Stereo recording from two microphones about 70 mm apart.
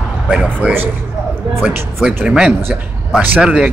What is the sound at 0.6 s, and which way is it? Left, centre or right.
Speech, centre.